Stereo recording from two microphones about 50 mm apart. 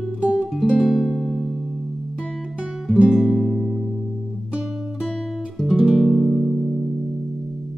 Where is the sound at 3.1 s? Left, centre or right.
Centre.